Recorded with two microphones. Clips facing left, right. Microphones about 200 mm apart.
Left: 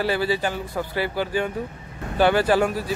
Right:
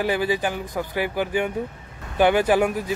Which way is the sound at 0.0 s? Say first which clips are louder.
Even; 15° right (ahead or behind).